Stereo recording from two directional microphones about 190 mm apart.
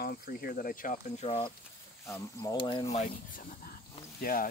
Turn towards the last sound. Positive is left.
turn(degrees=45)  # may be behind; listen again after turning